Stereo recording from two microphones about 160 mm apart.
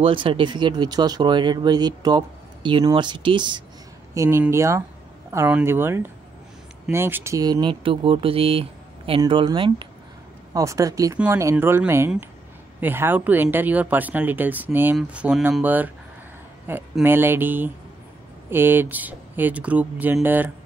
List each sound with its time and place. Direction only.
0.0 s speech: 35° right (ahead or behind)
4.1 s speech: 15° right (ahead or behind)
10.5 s speech: 20° right (ahead or behind)
11.5 s speech: 10° right (ahead or behind)